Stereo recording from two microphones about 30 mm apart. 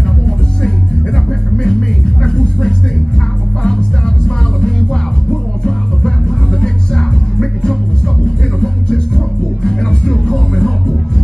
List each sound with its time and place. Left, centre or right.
1.6 s music: centre
4.2 s music: left
6.6 s music: left